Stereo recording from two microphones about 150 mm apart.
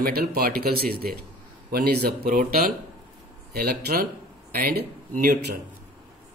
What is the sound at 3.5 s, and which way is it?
Speech, 90° right.